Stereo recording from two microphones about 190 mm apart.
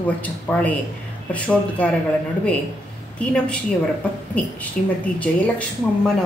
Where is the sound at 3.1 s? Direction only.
5° left (ahead or behind).